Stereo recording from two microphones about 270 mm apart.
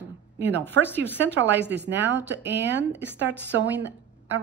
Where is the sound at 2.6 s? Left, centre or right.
Right.